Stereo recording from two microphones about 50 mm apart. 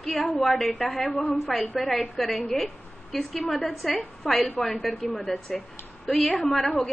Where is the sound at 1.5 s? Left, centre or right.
Centre.